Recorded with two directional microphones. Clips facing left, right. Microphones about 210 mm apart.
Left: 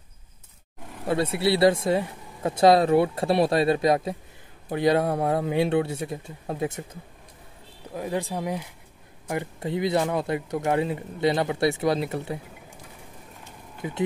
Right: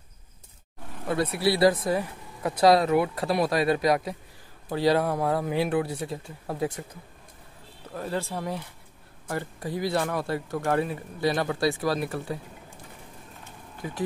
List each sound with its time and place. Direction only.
1.0 s speech: 25° left (ahead or behind)
7.9 s speech: 15° left (ahead or behind)
13.8 s speech: 20° left (ahead or behind)